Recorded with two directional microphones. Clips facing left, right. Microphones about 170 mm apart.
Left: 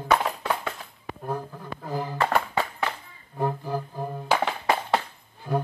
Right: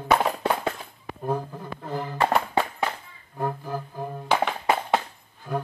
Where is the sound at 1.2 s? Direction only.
10° right (ahead or behind).